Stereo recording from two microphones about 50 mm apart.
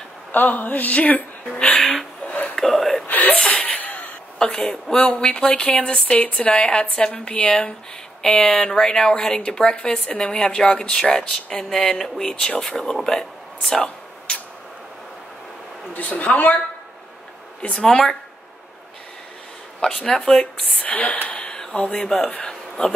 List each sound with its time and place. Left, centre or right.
0.3 s speech: left
1.5 s speech: centre
2.2 s a sound: left
2.5 s speech: centre
3.1 s a sound: left
4.5 s speech: left
13.7 s a sound: left
15.9 s speech: left
17.7 s speech: centre
19.8 s speech: centre
20.8 s speech: left; by 22.3 s centre
22.4 s a sound: centre